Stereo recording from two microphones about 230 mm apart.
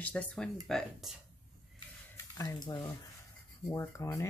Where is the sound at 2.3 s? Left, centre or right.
Centre.